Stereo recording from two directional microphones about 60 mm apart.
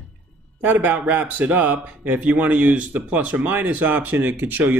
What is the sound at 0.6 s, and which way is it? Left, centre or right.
Speech, right.